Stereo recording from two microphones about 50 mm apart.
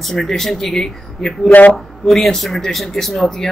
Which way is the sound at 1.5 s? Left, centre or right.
Left.